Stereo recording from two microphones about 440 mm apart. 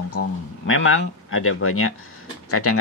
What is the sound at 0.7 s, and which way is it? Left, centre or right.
Speech, left.